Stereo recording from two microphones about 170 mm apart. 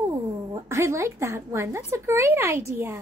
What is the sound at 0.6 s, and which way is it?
A woman's voice, 15° right (ahead or behind).